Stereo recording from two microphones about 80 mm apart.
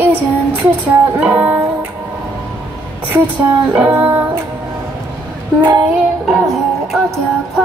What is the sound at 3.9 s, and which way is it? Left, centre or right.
Music, right.